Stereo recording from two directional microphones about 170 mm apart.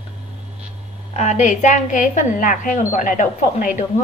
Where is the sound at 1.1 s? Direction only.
40° left (ahead or behind).